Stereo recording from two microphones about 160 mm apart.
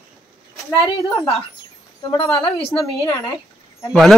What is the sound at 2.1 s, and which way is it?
Speech, 35° left (ahead or behind).